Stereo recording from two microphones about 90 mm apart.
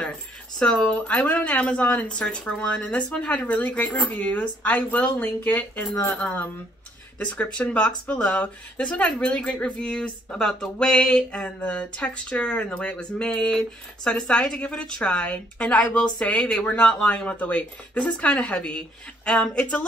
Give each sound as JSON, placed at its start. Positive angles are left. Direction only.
{"t": 0.6, "sound": "speech", "side_deg": 10}